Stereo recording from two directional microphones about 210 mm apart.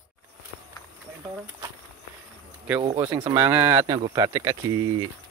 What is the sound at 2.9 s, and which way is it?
Speech, 5° right (ahead or behind).